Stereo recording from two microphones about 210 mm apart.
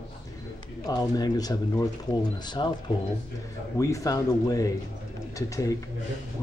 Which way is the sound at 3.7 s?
15° left (ahead or behind).